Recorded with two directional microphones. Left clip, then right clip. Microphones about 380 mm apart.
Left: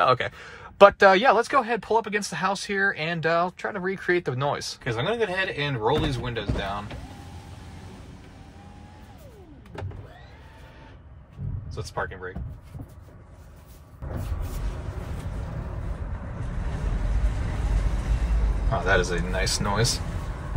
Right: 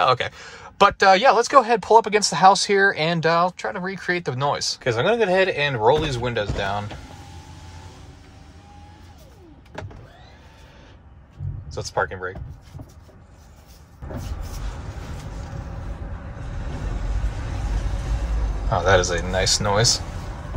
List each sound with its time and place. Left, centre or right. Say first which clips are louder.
0.0 s speech: right 2 dB; centre
4.8 s speech: right 7 dB; centre
11.7 s speech: right 7 dB; centre
18.9 s speech: right 5 dB; centre